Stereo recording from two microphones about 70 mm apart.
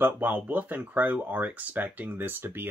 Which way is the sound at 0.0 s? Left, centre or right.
Right.